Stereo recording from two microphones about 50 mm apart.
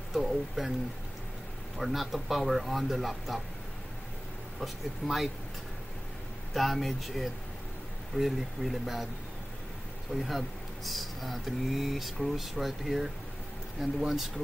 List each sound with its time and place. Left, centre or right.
0.1 s a sound: centre
1.8 s speech: centre
4.6 s speech: centre
6.5 s speech: centre
10.1 s speech: centre